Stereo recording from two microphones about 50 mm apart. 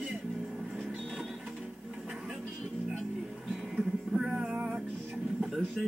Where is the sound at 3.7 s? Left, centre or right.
Centre.